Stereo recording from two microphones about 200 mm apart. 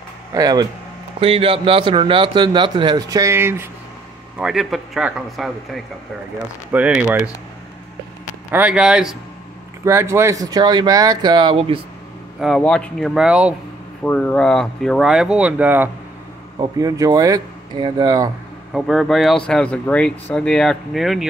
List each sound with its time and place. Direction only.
0.3 s speech: 20° right (ahead or behind)
8.5 s speech: 5° right (ahead or behind); by 11.8 s 25° right (ahead or behind)
12.4 s speech: centre (ahead or behind)
14.0 s speech: 5° left (ahead or behind); by 18.3 s 20° right (ahead or behind)
18.7 s speech: centre (ahead or behind)